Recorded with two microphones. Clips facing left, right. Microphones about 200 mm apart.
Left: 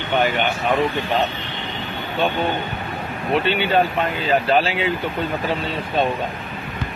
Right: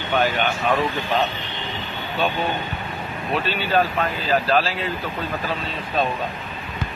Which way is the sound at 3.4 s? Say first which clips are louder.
Left 5 dB; 65° left (ahead or behind).